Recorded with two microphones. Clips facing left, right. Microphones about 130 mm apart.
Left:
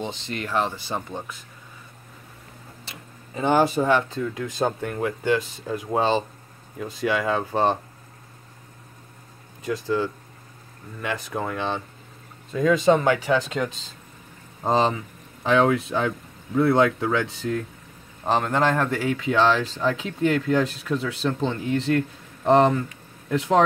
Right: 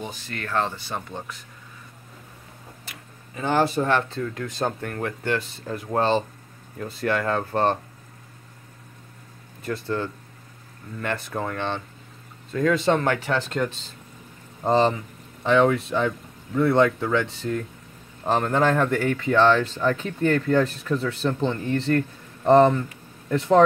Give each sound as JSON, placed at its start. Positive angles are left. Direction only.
{"t": 0.0, "sound": "speech", "side_deg": 25}
{"t": 2.9, "sound": "tick-tock", "side_deg": 25}
{"t": 3.5, "sound": "speech", "side_deg": 10}
{"t": 9.7, "sound": "speech", "side_deg": 10}
{"t": 13.6, "sound": "speech", "side_deg": -5}
{"t": 15.4, "sound": "speech", "side_deg": 5}